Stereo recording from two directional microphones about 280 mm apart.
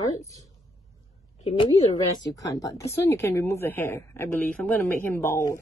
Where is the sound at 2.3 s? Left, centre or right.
Centre.